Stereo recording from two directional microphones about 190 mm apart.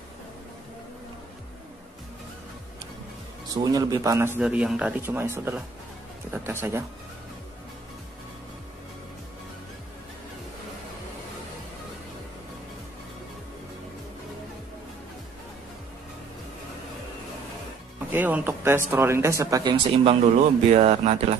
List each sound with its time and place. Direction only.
3.4 s speech: 20° right (ahead or behind)
4.4 s speech: 5° right (ahead or behind)
18.1 s speech: 10° right (ahead or behind)
20.7 s speech: 35° right (ahead or behind)